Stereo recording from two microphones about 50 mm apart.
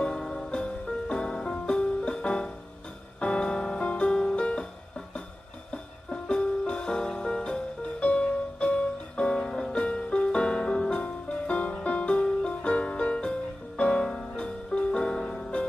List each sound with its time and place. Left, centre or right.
0.0 s music: centre
5.7 s music: centre